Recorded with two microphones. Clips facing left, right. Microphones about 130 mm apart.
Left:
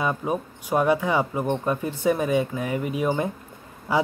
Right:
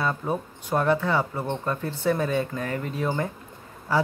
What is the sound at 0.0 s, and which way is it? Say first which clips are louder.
Speech: left 2 dB; 15° left (ahead or behind).